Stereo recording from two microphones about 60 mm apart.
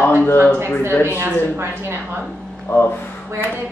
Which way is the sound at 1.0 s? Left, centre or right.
Right.